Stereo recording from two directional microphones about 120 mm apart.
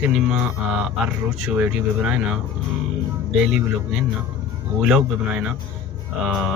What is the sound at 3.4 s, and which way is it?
Speech, 5° right (ahead or behind).